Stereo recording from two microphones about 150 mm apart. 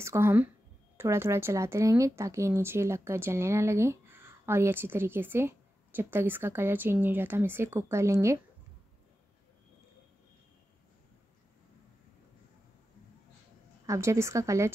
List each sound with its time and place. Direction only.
0.0 s speech: 15° right (ahead or behind)
13.8 s a woman's voice: 20° right (ahead or behind)